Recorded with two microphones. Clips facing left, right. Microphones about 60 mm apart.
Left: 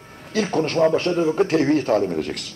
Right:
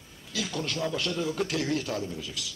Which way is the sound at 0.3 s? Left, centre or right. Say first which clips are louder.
Left 11 dB; left.